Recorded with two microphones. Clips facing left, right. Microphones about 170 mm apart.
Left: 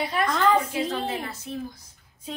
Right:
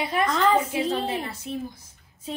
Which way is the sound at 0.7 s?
30° right (ahead or behind).